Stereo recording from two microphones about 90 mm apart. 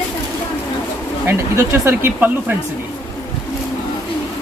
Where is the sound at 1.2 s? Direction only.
25° right (ahead or behind).